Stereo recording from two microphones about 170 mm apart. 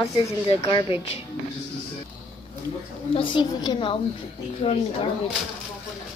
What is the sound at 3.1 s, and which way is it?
A woman's voice, 25° left (ahead or behind).